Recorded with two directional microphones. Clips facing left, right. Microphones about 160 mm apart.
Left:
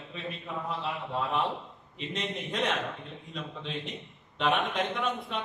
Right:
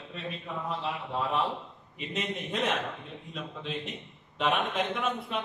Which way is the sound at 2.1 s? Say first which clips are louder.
Right 1 dB; 5° right (ahead or behind).